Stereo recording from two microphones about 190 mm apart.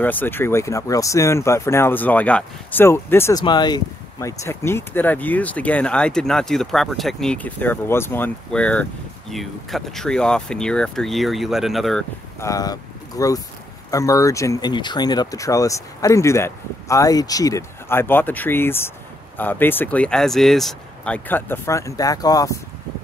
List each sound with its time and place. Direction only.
0.0 s speech: 10° left (ahead or behind)
12.4 s speech: 15° left (ahead or behind)